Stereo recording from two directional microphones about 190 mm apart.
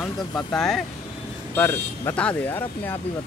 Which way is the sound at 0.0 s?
20° left (ahead or behind).